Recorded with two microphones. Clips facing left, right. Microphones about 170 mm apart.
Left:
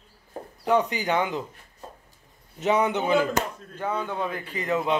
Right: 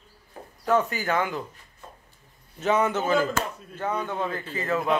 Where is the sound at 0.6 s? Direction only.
15° left (ahead or behind).